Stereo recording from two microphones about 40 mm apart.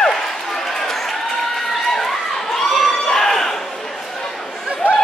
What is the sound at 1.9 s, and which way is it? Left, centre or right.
Crowd, centre.